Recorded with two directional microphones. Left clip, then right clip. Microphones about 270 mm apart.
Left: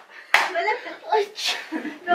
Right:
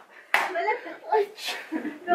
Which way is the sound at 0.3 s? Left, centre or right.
Centre.